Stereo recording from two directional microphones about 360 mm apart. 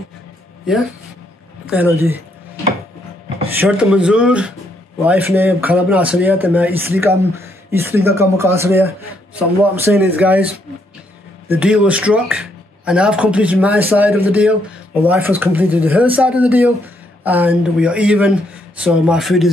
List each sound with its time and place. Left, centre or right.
1.7 s a man's voice: centre
3.6 s a man's voice: centre